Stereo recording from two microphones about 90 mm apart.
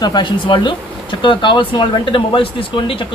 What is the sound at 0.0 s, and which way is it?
Speech, 60° left (ahead or behind).